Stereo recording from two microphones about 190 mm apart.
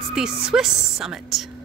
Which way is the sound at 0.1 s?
5° right (ahead or behind).